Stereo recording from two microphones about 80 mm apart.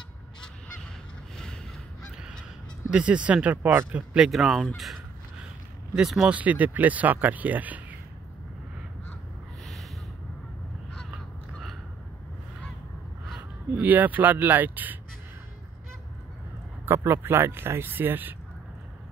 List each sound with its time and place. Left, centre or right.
2.9 s speech: centre
4.3 s fowl: centre
5.9 s speech: centre
6.3 s speech: centre
13.4 s speech: right
16.8 s speech: right